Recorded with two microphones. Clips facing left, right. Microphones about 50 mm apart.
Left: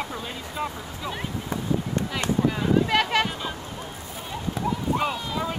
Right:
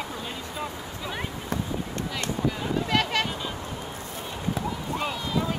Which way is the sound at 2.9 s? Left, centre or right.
Left.